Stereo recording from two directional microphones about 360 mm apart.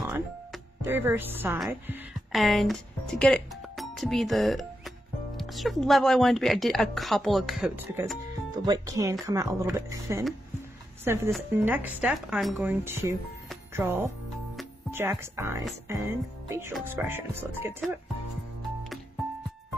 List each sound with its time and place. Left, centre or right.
0.0 s a woman's voice: centre